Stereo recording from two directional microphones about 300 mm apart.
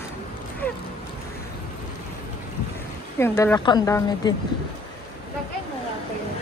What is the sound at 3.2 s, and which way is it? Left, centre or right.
Speech, centre.